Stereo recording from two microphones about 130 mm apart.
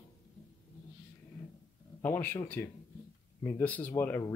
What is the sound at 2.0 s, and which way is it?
Speech, 15° left (ahead or behind).